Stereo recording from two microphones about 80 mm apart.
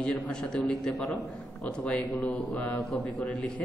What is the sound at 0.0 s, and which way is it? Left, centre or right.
A man's voice, centre.